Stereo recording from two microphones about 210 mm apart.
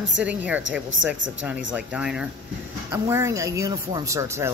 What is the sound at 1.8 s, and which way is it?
Speech, 5° right (ahead or behind).